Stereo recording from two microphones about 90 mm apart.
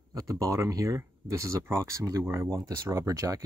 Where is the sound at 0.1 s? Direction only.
40° right (ahead or behind).